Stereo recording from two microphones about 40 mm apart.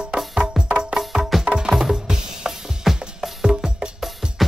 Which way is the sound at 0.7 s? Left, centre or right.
Right.